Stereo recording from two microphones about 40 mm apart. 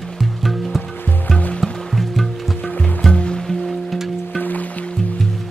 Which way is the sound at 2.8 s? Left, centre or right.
Left.